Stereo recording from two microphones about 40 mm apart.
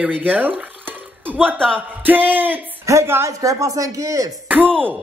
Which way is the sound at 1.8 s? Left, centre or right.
Right.